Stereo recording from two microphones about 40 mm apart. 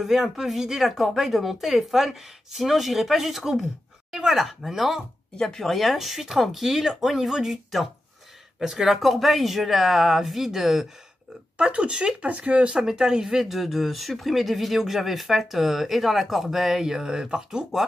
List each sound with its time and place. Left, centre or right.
0.0 s speech: centre
5.4 s speech: centre
11.5 s speech: right
12.3 s speech: right
12.6 s speech: centre